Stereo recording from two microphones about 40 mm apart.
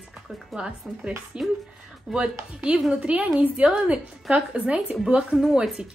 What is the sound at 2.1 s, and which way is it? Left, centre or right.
Speech, centre.